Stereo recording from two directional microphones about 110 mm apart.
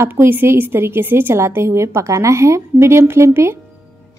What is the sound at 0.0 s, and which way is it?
Speech, 20° right (ahead or behind).